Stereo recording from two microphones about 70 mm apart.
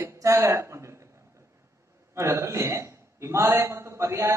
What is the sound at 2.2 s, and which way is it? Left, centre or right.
A man's voice, right.